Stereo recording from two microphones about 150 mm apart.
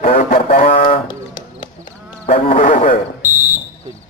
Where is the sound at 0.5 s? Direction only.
45° left (ahead or behind).